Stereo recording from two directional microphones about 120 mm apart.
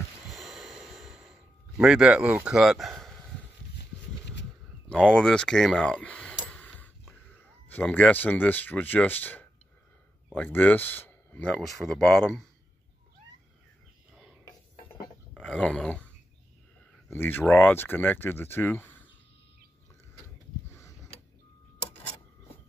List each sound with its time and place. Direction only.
0.3 s snort: centre (ahead or behind)
1.8 s speech: 5° right (ahead or behind)
4.8 s speech: 10° left (ahead or behind)
6.4 s a sound: 10° left (ahead or behind)
7.7 s speech: 15° left (ahead or behind)
15.3 s dog: 5° left (ahead or behind)
17.1 s speech: 15° left (ahead or behind)